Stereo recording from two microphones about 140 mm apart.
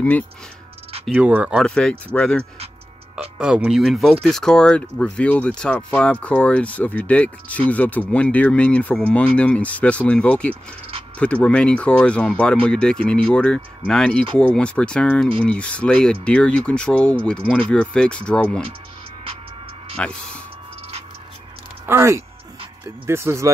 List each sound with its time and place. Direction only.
1.1 s speech: 10° right (ahead or behind)
1.6 s speech: 5° left (ahead or behind)
3.3 s speech: 5° right (ahead or behind)
20.0 s speech: 5° left (ahead or behind)
21.8 s speech: 20° right (ahead or behind)